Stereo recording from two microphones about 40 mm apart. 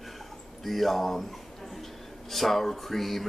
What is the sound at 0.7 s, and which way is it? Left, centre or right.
Speech, centre.